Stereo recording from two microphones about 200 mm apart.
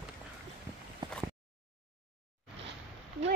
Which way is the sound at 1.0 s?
20° right (ahead or behind).